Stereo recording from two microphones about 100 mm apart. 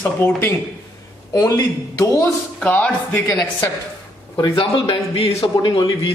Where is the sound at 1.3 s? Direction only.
35° left (ahead or behind).